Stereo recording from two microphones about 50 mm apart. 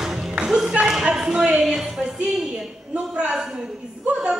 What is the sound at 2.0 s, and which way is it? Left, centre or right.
Music, centre.